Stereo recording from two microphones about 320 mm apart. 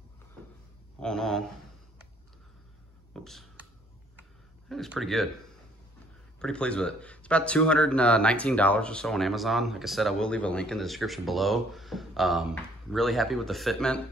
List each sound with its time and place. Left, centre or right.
1.0 s speech: centre
3.1 s a sound: centre
4.6 s speech: centre
6.4 s speech: centre